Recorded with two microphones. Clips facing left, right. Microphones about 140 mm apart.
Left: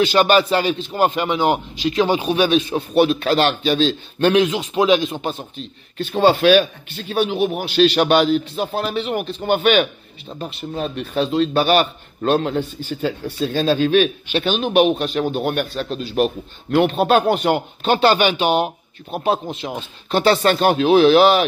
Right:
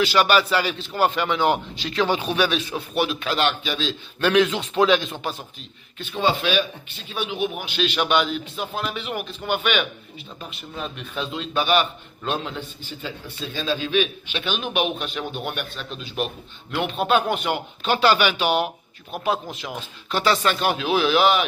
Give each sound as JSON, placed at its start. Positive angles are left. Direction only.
{"t": 0.0, "sound": "a man's voice", "side_deg": 25}
{"t": 2.7, "sound": "a man's voice", "side_deg": 30}
{"t": 4.5, "sound": "speech", "side_deg": 15}
{"t": 5.9, "sound": "a man's voice", "side_deg": 40}
{"t": 14.3, "sound": "a man's voice", "side_deg": 35}